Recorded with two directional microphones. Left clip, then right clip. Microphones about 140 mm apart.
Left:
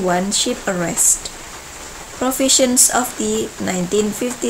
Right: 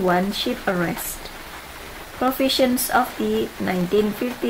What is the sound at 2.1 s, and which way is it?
Speech, 10° left (ahead or behind).